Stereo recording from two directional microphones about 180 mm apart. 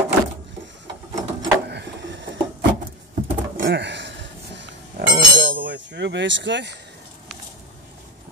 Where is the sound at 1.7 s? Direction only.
70° right (ahead or behind).